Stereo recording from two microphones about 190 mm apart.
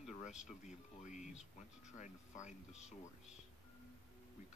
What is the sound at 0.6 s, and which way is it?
Speech, 40° left (ahead or behind).